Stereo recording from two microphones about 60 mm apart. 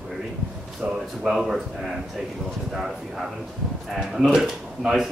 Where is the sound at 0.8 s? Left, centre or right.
Right.